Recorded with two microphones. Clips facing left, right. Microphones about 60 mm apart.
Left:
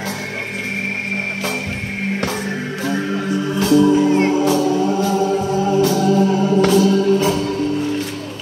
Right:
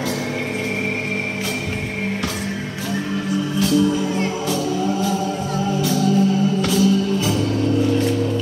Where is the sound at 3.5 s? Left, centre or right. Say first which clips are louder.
Left 6 dB; left.